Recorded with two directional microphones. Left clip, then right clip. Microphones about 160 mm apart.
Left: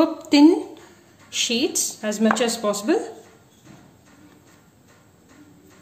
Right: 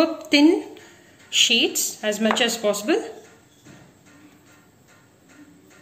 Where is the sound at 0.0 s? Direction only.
40° left (ahead or behind).